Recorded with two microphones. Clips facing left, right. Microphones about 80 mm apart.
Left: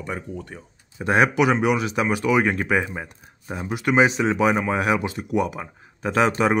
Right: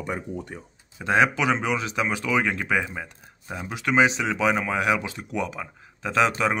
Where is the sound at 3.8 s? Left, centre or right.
Left.